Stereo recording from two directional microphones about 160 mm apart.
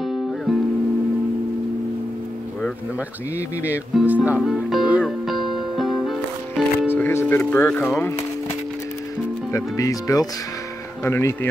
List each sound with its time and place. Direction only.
0.0 s music: centre (ahead or behind)
3.9 s speech: 10° right (ahead or behind)
4.4 s music: centre (ahead or behind)
6.9 s speech: 15° left (ahead or behind)
9.5 s speech: 20° left (ahead or behind)